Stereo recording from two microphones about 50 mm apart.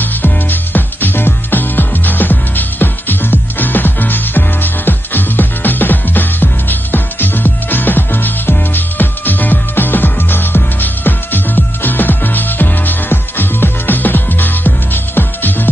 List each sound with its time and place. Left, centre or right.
0.0 s music: left